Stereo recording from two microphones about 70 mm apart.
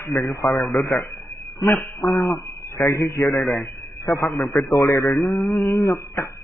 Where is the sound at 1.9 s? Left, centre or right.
Left.